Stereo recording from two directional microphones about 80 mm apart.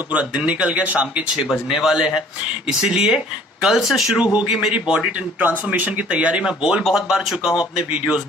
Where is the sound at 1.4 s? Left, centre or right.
Centre.